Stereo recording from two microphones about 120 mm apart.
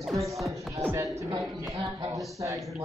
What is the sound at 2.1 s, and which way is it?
Speech, 25° right (ahead or behind).